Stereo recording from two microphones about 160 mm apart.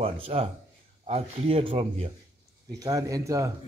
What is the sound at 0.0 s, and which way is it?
A man's voice, 40° right (ahead or behind).